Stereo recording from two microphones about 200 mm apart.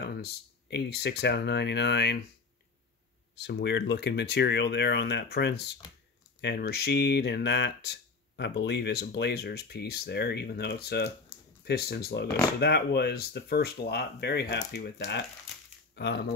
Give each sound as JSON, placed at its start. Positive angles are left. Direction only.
{"t": 0.0, "sound": "speech", "side_deg": 55}
{"t": 3.3, "sound": "speech", "side_deg": 60}